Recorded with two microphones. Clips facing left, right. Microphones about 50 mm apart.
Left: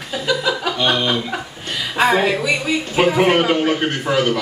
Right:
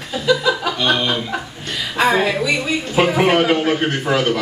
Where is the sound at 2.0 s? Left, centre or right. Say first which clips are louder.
Even; centre.